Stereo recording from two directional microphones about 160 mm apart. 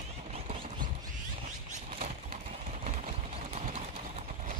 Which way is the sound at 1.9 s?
45° right (ahead or behind).